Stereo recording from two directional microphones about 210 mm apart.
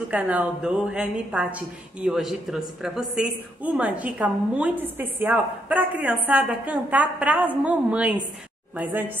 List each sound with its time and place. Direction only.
0.1 s a woman's voice: 5° right (ahead or behind)